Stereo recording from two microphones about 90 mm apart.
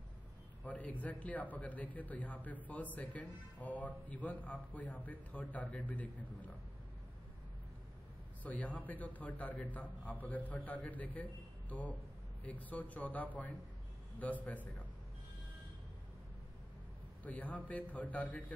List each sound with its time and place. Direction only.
0.7 s a man's voice: 15° left (ahead or behind)
8.5 s a man's voice: 15° left (ahead or behind)
17.2 s a man's voice: 15° left (ahead or behind)